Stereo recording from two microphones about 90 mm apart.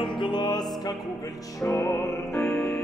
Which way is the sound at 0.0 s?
60° left (ahead or behind).